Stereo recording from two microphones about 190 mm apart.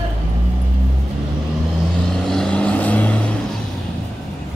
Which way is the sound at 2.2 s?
5° left (ahead or behind).